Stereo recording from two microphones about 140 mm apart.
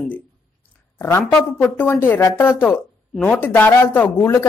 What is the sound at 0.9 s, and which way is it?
Speech, 15° left (ahead or behind).